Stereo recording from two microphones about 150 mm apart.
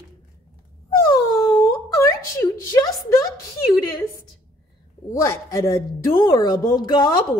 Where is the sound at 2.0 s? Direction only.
20° left (ahead or behind).